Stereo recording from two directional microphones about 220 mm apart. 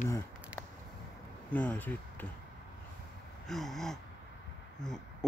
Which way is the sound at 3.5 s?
Centre (ahead or behind).